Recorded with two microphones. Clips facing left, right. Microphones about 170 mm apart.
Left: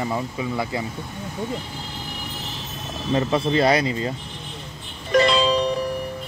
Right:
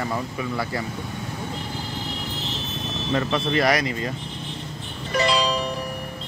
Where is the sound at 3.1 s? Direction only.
25° left (ahead or behind).